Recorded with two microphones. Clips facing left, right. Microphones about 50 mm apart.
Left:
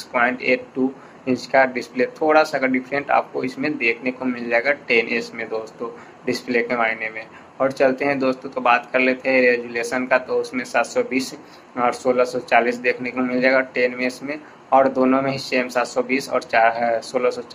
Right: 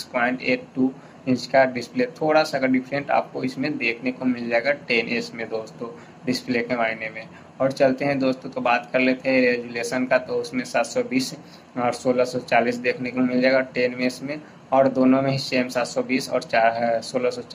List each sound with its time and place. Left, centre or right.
0.1 s speech: left
10.6 s speech: centre
11.8 s speech: left
12.2 s speech: centre